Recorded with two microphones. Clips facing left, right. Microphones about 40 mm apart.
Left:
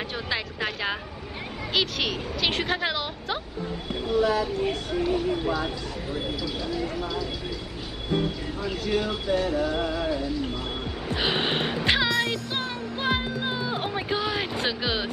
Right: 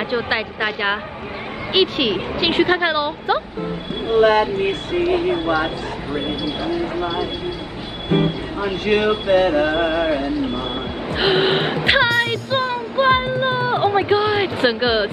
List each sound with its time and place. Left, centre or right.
0.1 s speech: right
1.7 s speech: right
4.1 s speech: right
6.4 s speech: right
8.6 s speech: right
11.1 s music: right